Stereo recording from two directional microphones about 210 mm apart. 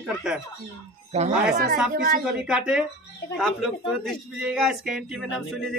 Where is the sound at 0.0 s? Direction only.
Centre (ahead or behind).